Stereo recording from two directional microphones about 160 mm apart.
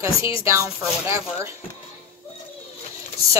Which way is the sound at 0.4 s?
15° right (ahead or behind).